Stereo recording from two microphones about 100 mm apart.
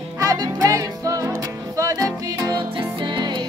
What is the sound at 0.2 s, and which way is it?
Music, 35° right (ahead or behind).